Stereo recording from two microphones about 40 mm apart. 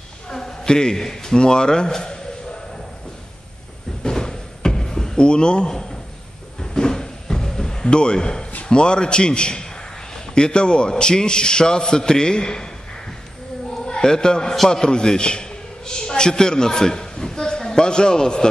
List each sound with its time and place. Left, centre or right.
0.3 s speech: centre
4.0 s a sound: centre
8.6 s a man's voice: left
13.8 s a man's voice: centre